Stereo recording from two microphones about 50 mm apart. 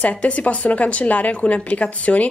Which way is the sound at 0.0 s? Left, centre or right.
Left.